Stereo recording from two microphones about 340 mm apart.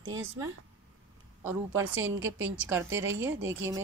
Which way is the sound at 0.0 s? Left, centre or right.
Right.